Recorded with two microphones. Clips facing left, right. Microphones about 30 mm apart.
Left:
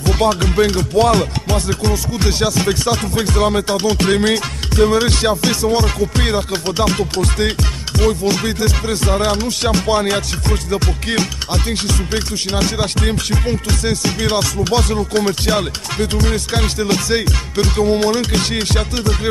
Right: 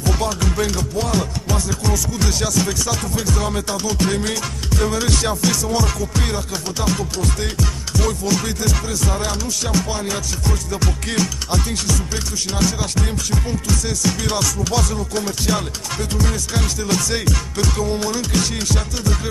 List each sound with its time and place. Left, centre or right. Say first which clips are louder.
0.0 s music: left 6 dB; left
0.7 s music: left 8 dB; left
2.2 s music: left 5 dB; left
6.9 s music: left 4 dB; left
7.3 s music: left 5 dB; left
8.0 s music: left 5 dB; left
10.7 s music: left 4 dB; left